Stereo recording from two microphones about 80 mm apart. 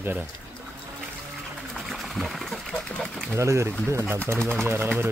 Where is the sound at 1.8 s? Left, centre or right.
Centre.